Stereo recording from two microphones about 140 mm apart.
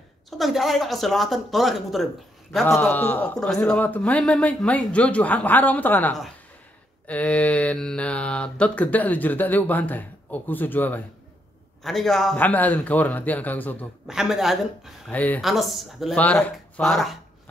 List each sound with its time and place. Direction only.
0.4 s speech: centre (ahead or behind)
11.8 s speech: centre (ahead or behind)
14.0 s speech: 5° right (ahead or behind)
15.0 s speech: 10° left (ahead or behind)
15.4 s speech: centre (ahead or behind)
16.2 s speech: 10° left (ahead or behind)